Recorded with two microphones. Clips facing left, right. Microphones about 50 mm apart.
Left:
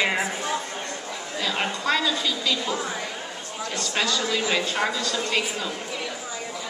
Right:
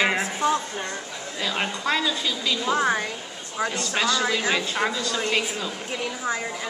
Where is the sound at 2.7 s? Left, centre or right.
Right.